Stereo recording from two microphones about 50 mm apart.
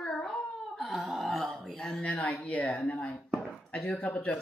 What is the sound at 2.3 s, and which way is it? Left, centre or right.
Speech, left.